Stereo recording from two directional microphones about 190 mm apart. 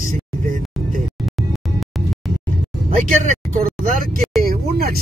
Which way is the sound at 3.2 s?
45° right (ahead or behind).